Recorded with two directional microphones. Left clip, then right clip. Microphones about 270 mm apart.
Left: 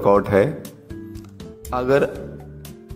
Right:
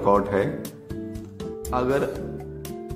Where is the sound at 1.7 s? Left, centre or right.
Centre.